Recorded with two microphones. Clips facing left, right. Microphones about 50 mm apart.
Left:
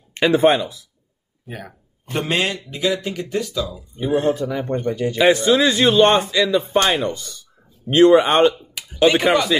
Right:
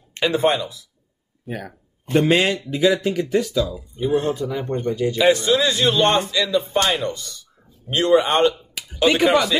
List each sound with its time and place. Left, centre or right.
0.1 s speech: left
1.5 s speech: centre
4.0 s speech: left
4.3 s a man's voice: left